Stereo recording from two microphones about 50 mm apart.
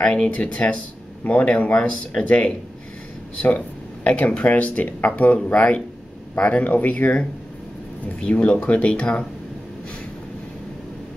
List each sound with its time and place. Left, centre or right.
0.0 s speech: centre
8.2 s speech: left